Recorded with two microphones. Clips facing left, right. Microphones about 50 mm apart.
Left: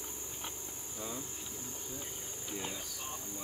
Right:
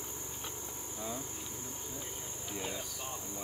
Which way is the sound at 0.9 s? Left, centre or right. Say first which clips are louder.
Right 1 dB; centre.